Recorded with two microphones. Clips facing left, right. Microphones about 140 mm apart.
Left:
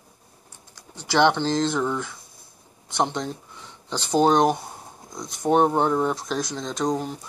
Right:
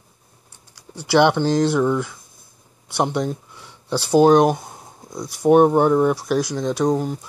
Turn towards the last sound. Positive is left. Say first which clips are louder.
# right 6 dB
turn(degrees=-5)  # may be behind; listen again after turning